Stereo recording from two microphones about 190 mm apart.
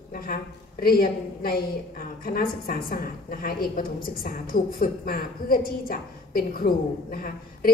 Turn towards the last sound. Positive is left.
turn(degrees=50)  # may be behind; listen again after turning